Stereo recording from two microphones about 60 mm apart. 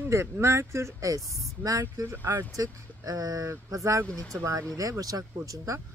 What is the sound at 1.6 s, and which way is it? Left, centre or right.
Speech, right.